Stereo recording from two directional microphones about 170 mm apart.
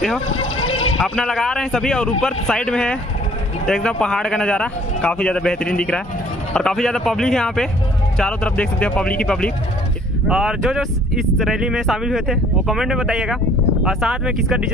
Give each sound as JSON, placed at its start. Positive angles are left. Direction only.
{"t": 0.7, "sound": "a sound", "side_deg": 35}
{"t": 0.9, "sound": "speech", "side_deg": 5}
{"t": 10.2, "sound": "speech", "side_deg": -5}